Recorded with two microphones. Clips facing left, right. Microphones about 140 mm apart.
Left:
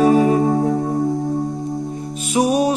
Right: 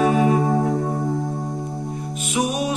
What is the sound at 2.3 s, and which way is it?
Music, 35° left (ahead or behind).